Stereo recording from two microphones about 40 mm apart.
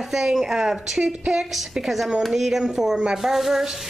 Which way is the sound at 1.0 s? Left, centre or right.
Right.